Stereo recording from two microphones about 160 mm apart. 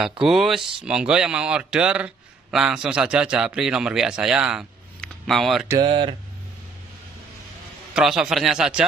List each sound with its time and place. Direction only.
0.2 s a man's voice: centre (ahead or behind)
5.8 s speech: 35° right (ahead or behind)
7.9 s a man's voice: 5° right (ahead or behind)